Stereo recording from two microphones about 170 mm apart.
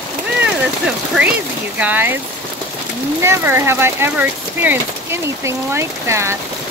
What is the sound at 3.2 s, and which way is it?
Speech, 15° right (ahead or behind).